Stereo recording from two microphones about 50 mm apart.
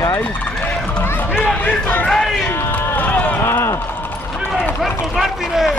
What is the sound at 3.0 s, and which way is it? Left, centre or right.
Run, left.